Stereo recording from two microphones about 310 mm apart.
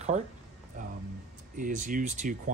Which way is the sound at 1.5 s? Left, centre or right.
Right.